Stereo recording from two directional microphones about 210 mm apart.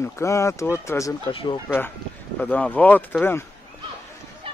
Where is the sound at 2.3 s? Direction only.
5° left (ahead or behind).